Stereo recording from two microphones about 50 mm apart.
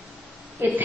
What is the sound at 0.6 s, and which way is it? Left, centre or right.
Speech, right.